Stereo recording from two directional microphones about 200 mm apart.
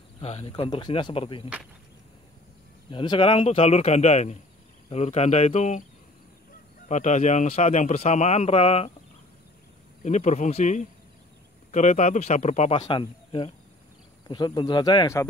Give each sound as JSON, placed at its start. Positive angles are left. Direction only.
{"t": 0.2, "sound": "speech", "side_deg": 30}
{"t": 2.9, "sound": "a man's voice", "side_deg": 25}
{"t": 6.9, "sound": "a man's voice", "side_deg": 35}
{"t": 10.0, "sound": "a man's voice", "side_deg": 35}